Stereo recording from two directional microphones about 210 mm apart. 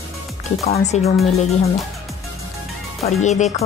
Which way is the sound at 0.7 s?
30° left (ahead or behind).